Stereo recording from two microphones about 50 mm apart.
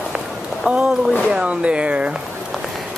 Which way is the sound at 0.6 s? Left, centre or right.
Centre.